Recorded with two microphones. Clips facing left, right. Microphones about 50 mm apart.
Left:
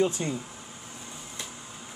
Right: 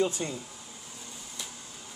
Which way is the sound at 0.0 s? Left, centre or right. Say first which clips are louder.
Left 3 dB; centre.